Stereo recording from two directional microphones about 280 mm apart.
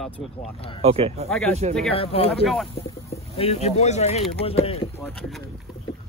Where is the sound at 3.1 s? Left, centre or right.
Left.